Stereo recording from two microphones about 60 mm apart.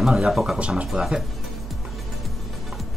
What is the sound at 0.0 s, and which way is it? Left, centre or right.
Speech, centre.